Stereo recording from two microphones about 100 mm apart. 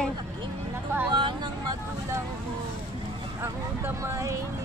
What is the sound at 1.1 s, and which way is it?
Speech, 55° right (ahead or behind).